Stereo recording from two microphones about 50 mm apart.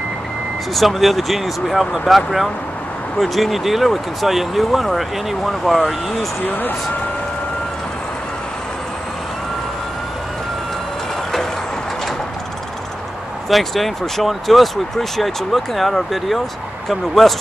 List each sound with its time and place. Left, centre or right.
0.7 s speech: centre
6.4 s speech: left
13.5 s speech: centre